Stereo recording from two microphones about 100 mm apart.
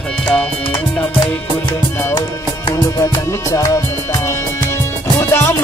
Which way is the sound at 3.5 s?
35° left (ahead or behind).